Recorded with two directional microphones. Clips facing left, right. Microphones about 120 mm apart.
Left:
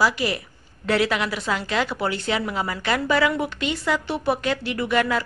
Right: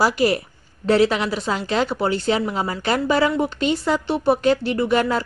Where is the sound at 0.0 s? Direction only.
40° right (ahead or behind).